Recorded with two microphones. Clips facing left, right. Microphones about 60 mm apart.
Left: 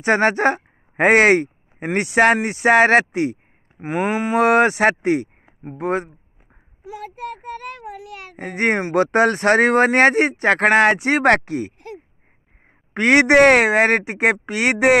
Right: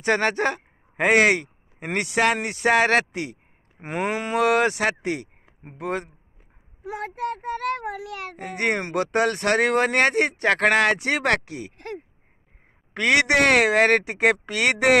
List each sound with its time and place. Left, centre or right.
0.0 s speech: left
3.8 s speech: centre; by 6.0 s left
6.8 s a sound: right
7.4 s child singing: right
8.4 s speech: left
12.9 s speech: left